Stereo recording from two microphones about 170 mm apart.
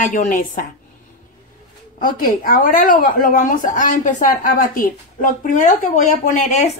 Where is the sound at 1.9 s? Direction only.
55° left (ahead or behind).